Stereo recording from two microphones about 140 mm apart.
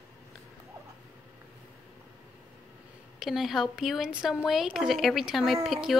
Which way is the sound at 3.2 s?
Centre (ahead or behind).